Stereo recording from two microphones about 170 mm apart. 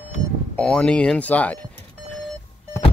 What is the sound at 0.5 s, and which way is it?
Speech, 5° left (ahead or behind).